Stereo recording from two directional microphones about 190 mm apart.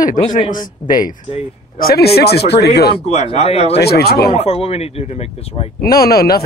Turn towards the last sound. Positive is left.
turn(degrees=55)  # may be behind; listen again after turning